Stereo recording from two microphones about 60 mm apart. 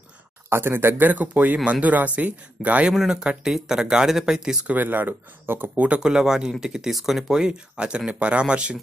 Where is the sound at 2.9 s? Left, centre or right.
Centre.